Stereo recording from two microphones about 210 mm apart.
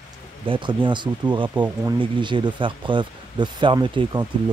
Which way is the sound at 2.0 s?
20° right (ahead or behind).